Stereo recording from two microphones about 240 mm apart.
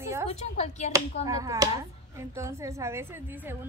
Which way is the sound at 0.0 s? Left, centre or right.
Centre.